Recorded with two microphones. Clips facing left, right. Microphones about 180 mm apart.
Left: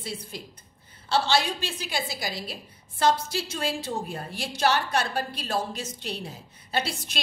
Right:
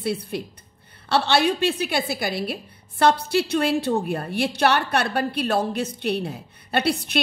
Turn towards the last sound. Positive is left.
turn(degrees=-60)  # may be behind; listen again after turning